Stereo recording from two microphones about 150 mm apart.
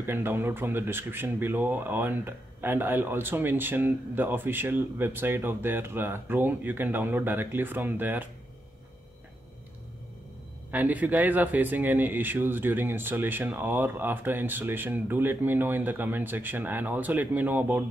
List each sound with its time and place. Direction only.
0.0 s speech: 15° right (ahead or behind)
10.7 s speech: 10° right (ahead or behind)